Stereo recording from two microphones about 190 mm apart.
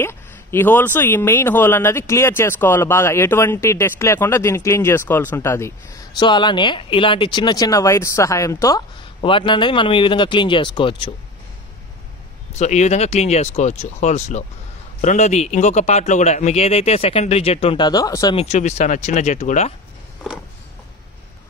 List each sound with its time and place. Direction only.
0.0 s speech: 10° left (ahead or behind)
12.5 s a man's voice: 35° left (ahead or behind); by 18.3 s 20° left (ahead or behind)
18.3 s a man's voice: 35° left (ahead or behind)